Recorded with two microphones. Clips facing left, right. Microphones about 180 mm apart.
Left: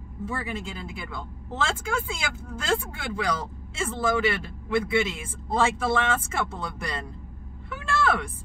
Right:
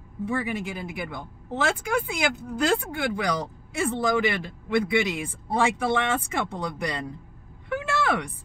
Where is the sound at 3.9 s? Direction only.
15° right (ahead or behind).